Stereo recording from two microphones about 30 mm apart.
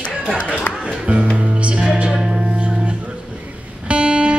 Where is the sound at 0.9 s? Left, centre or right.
Right.